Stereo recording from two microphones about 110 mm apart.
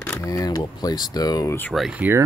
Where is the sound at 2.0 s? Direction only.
20° right (ahead or behind).